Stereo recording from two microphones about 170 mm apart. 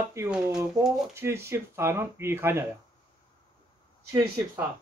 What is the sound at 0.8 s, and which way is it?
Speech, 25° right (ahead or behind).